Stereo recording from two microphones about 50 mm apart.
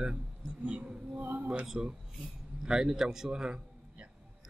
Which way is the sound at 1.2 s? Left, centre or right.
Right.